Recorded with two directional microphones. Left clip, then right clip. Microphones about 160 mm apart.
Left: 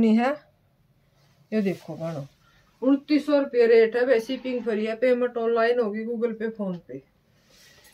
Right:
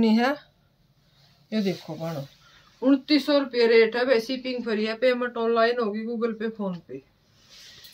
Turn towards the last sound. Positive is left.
turn(degrees=20)  # may be behind; listen again after turning